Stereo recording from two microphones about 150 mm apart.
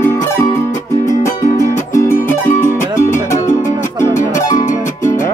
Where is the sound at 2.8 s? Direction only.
60° left (ahead or behind).